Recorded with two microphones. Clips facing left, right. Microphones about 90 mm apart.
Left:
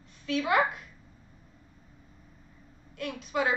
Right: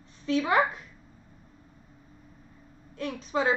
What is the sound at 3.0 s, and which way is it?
Speech, 30° right (ahead or behind).